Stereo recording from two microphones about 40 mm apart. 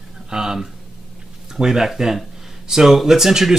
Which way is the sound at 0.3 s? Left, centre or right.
Centre.